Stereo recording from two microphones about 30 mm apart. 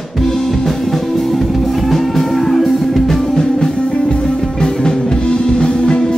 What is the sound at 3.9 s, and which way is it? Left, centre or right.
Music, left.